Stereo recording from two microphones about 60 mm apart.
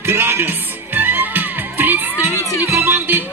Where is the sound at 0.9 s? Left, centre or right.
Right.